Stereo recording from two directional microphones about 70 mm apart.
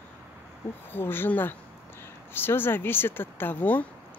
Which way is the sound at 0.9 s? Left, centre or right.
Left.